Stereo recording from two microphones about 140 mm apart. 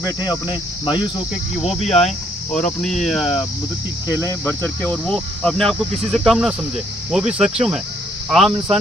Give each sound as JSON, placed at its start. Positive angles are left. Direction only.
{"t": 0.0, "sound": "speech", "side_deg": 30}
{"t": 1.9, "sound": "speech", "side_deg": 0}
{"t": 2.8, "sound": "cricket", "side_deg": 0}
{"t": 4.8, "sound": "cricket", "side_deg": 10}